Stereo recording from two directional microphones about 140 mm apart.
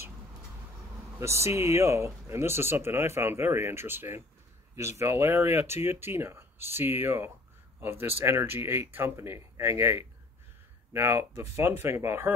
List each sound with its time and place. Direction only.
1.2 s speech: 20° right (ahead or behind)